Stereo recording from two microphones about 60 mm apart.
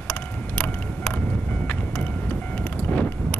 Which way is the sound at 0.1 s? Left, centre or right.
Centre.